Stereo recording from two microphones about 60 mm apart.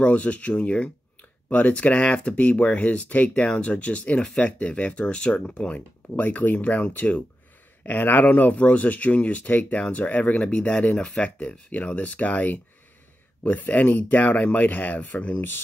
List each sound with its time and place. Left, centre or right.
0.0 s speech: left